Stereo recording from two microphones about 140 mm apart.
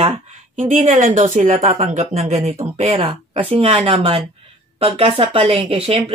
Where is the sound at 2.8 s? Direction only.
45° right (ahead or behind).